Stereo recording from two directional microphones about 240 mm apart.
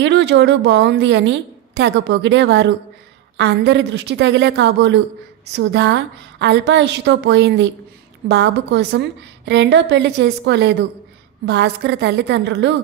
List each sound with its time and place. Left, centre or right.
0.0 s a woman's voice: right